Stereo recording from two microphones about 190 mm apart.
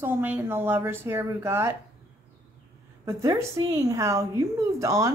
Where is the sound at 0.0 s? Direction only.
10° right (ahead or behind).